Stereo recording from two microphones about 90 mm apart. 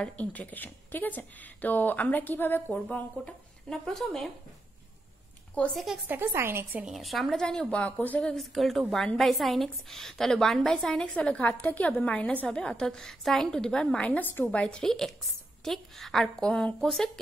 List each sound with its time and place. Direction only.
0.0 s speech: 15° left (ahead or behind)
5.7 s speech: centre (ahead or behind)
6.0 s a woman's voice: 25° right (ahead or behind)
6.8 s a woman's voice: centre (ahead or behind)